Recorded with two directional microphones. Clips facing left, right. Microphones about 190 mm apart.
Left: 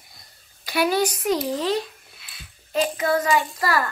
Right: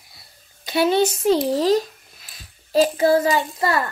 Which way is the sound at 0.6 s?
25° right (ahead or behind).